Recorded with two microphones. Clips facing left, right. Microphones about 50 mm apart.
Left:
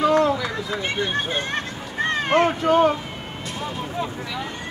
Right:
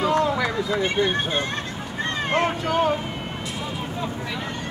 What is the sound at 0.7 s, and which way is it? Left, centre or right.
Speech, right.